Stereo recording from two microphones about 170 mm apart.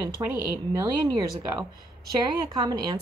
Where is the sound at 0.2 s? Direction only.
25° right (ahead or behind).